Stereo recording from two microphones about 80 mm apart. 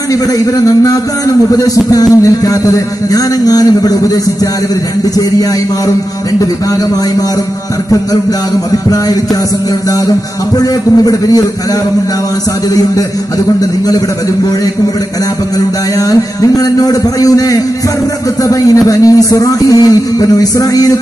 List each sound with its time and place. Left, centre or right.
0.1 s a man's voice: left
8.9 s a man's voice: left
10.6 s a man's voice: left
13.6 s a man's voice: left
16.0 s a man's voice: left